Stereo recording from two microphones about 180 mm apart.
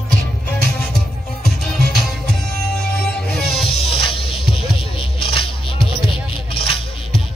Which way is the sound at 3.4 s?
Centre (ahead or behind).